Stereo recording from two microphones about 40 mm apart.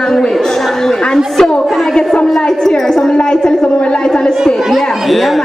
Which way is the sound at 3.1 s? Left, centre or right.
Left.